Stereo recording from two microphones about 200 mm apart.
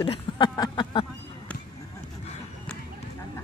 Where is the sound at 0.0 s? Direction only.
25° left (ahead or behind).